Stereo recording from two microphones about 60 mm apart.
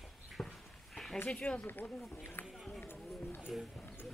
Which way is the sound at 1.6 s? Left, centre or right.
Left.